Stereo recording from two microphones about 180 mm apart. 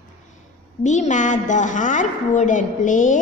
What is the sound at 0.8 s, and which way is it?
A woman's voice, 45° left (ahead or behind).